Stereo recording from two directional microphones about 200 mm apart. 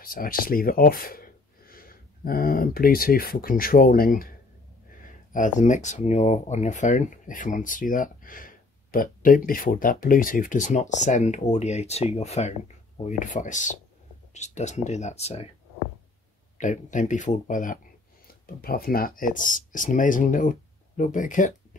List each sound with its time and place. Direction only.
0.0 s speech: 45° left (ahead or behind)
5.3 s speech: 40° left (ahead or behind)
16.5 s speech: 40° left (ahead or behind)